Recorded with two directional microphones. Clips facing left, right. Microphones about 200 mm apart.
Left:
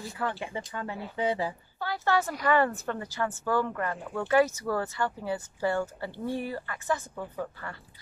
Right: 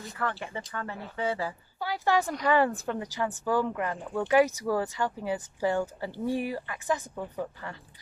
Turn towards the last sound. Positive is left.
turn(degrees=-15)  # may be behind; listen again after turning